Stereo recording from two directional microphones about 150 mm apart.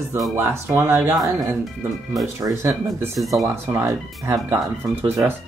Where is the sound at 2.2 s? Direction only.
20° right (ahead or behind).